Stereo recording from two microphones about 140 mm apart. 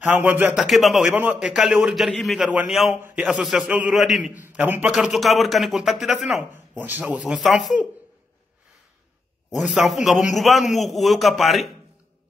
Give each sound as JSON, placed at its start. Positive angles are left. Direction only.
{"t": 0.0, "sound": "a man's voice", "side_deg": -15}
{"t": 0.6, "sound": "a man's voice", "side_deg": 0}
{"t": 1.1, "sound": "a man's voice", "side_deg": -15}
{"t": 4.8, "sound": "a man's voice", "side_deg": 0}
{"t": 9.5, "sound": "a man's voice", "side_deg": 0}